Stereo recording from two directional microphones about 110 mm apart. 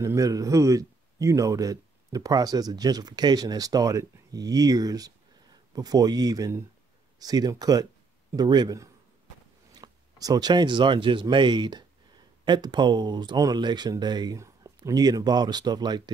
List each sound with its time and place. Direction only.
0.0 s a man's voice: 30° right (ahead or behind)
9.8 s speech: 35° right (ahead or behind)